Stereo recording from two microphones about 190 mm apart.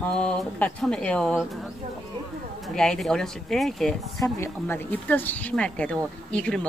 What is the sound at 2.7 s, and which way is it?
Speech, 5° left (ahead or behind).